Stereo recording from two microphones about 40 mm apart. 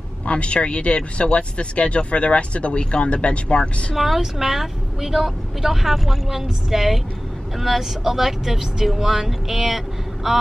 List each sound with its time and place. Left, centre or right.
0.3 s speech: left
3.9 s speech: centre